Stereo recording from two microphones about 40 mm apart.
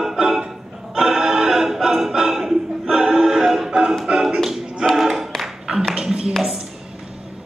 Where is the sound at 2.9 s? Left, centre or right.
Right.